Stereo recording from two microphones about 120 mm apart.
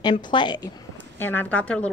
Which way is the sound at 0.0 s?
40° left (ahead or behind).